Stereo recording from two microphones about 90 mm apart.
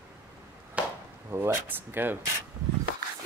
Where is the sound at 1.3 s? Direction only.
25° right (ahead or behind).